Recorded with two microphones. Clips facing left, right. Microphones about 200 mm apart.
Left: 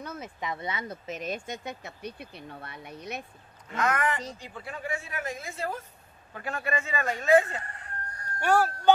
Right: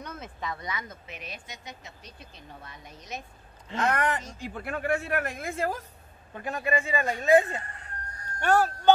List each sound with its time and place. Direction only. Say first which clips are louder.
0.0 s speech: left 1 dB; 10° left (ahead or behind); by 0.9 s 30° left (ahead or behind)
1.0 s speech: left 9 dB; 45° left (ahead or behind); by 3.3 s 60° left (ahead or behind)
3.6 s speech: right 1 dB; 30° right (ahead or behind)
4.6 s a man's voice: right 7 dB; 60° right (ahead or behind)
6.3 s speech: right 3 dB; 15° right (ahead or behind)
8.4 s speech: right 1 dB; 10° left (ahead or behind)